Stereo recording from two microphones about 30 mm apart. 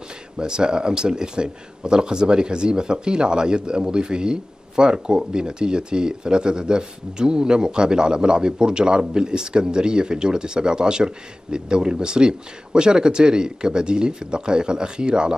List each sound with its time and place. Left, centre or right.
0.4 s speech: right